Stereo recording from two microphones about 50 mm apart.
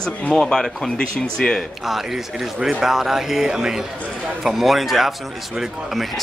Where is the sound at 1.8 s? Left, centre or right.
Centre.